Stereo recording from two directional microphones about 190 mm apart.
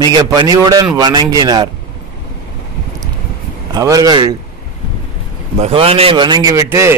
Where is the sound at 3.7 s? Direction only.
20° right (ahead or behind).